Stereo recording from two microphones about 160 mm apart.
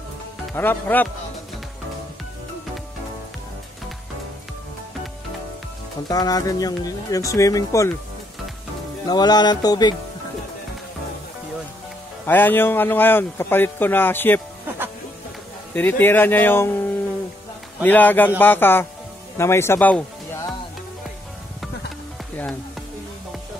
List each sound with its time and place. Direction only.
0.6 s speech: 10° left (ahead or behind)
6.0 s speech: 25° left (ahead or behind)
9.0 s speech: 25° left (ahead or behind)
12.3 s speech: 10° left (ahead or behind)
15.7 s speech: 10° left (ahead or behind)